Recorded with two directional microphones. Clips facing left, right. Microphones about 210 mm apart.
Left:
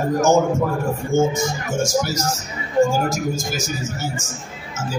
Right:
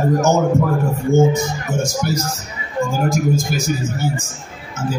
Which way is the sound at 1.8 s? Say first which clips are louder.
Left 3 dB; 55° right (ahead or behind).